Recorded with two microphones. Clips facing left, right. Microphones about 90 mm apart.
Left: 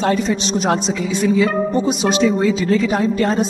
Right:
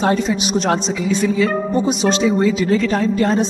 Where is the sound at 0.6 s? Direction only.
5° left (ahead or behind).